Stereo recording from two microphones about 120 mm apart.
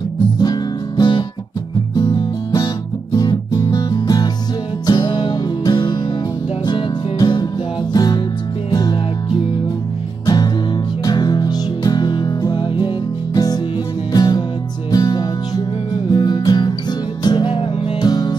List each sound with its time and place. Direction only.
0.4 s music: 35° left (ahead or behind)
10.2 s music: 35° left (ahead or behind)